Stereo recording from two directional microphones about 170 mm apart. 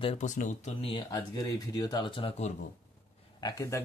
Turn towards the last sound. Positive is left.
turn(degrees=20)  # may be behind; listen again after turning